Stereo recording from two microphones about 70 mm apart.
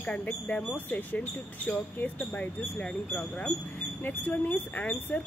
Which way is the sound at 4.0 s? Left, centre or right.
Left.